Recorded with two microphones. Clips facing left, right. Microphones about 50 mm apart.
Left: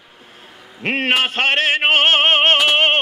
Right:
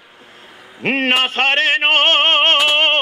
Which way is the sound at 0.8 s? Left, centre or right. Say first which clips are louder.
Right 2 dB; centre.